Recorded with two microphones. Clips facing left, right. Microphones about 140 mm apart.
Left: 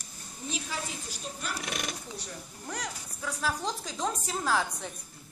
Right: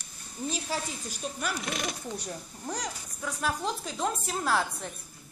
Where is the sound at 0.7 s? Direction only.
35° right (ahead or behind).